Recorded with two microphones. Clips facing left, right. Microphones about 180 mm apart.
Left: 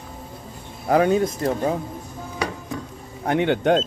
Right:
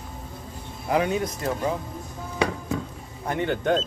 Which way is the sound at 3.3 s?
70° left (ahead or behind).